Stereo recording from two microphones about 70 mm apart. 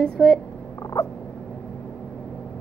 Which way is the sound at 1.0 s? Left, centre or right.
Left.